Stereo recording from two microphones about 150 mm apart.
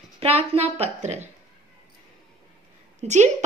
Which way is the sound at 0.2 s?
40° right (ahead or behind).